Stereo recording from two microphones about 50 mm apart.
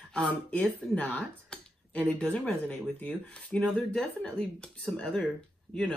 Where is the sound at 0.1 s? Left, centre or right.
Left.